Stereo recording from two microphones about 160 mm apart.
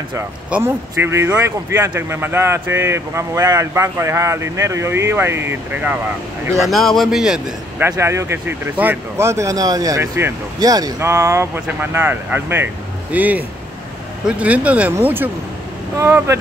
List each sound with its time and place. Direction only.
0.1 s speech: 10° right (ahead or behind)
6.6 s speech: centre (ahead or behind)
7.8 s speech: 15° right (ahead or behind)